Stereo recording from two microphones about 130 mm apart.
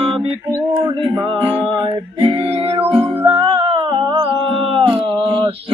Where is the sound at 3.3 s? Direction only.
45° right (ahead or behind).